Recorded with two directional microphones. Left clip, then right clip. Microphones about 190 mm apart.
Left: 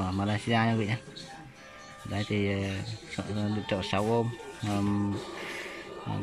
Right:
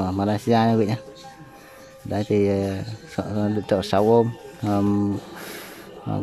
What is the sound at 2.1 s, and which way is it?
Speech, 25° right (ahead or behind).